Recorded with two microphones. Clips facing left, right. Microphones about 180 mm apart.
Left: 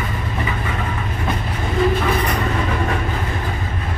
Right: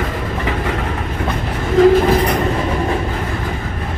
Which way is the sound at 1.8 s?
90° right.